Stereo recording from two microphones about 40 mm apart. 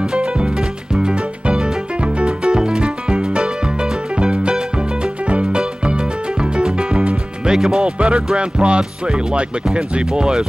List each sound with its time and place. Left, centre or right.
0.0 s music: centre
7.8 s speech: right